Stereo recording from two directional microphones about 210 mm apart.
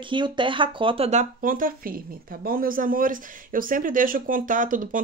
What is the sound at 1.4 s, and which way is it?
Speech, 40° right (ahead or behind).